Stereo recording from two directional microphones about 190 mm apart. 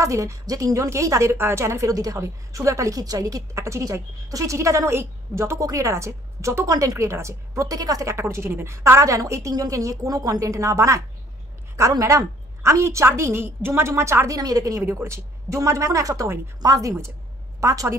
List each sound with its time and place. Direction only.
0.0 s a woman's voice: 15° right (ahead or behind)